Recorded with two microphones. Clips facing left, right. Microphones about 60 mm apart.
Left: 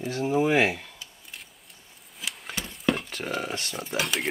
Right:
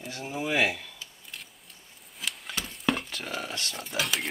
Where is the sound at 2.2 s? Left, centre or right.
Centre.